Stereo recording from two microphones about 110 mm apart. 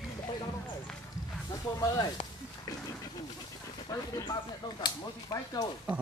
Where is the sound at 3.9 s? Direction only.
35° left (ahead or behind).